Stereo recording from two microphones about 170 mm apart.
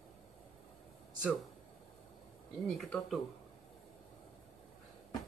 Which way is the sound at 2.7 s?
Centre (ahead or behind).